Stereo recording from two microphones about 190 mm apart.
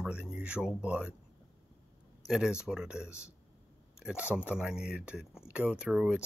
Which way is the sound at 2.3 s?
5° right (ahead or behind).